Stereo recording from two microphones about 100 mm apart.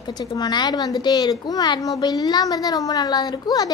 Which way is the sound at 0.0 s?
40° left (ahead or behind).